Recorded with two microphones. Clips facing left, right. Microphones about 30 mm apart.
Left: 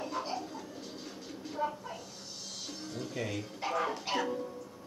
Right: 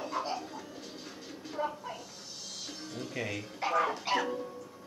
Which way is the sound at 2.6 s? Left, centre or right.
Centre.